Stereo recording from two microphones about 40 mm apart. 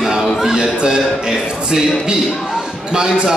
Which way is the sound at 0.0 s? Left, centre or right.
Centre.